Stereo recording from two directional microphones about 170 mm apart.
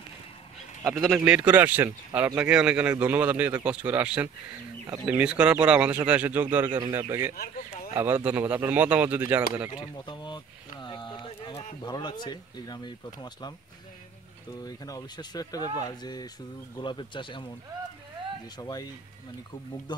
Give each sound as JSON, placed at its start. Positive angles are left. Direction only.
{"t": 0.8, "sound": "speech", "side_deg": -5}
{"t": 9.9, "sound": "speech", "side_deg": 30}
{"t": 14.6, "sound": "speech", "side_deg": 20}
{"t": 18.6, "sound": "speech", "side_deg": 25}
{"t": 19.9, "sound": "speech", "side_deg": 25}